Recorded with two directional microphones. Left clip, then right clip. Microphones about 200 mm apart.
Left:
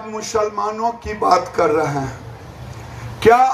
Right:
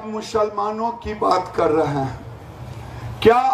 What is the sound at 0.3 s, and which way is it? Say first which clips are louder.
Speech: left 1 dB; 40° right (ahead or behind).